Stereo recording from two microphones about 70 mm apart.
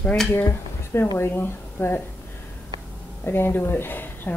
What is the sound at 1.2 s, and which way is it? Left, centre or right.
Speech, left.